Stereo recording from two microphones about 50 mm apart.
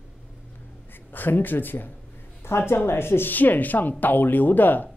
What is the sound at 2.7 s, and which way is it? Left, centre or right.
Speech, left.